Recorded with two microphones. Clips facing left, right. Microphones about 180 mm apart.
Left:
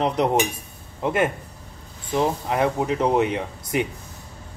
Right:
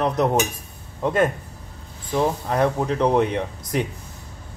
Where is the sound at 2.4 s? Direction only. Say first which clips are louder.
Right 1 dB; 10° left (ahead or behind).